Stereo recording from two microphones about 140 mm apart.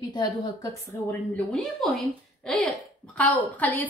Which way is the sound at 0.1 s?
20° left (ahead or behind).